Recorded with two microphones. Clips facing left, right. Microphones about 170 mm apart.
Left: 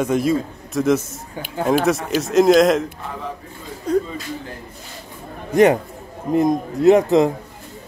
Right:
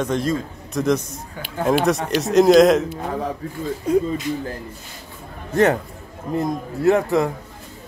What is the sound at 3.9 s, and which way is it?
Speech, 10° right (ahead or behind).